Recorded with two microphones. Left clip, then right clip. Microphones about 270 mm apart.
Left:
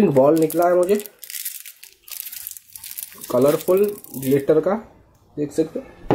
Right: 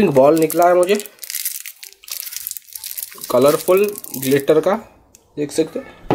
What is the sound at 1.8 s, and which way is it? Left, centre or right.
Crunch, centre.